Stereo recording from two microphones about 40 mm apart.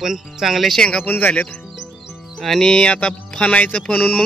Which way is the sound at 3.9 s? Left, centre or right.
Left.